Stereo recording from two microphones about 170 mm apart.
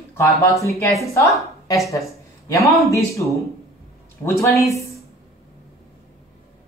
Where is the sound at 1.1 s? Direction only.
20° left (ahead or behind).